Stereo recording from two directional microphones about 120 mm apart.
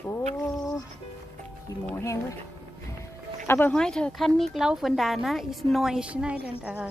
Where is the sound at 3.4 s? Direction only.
20° left (ahead or behind).